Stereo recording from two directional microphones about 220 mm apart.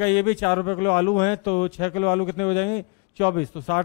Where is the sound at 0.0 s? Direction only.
10° left (ahead or behind).